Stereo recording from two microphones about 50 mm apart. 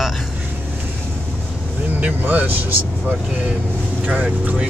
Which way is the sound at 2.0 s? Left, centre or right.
Right.